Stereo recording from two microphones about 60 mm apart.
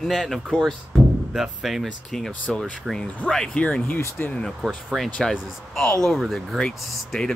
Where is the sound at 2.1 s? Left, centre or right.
Centre.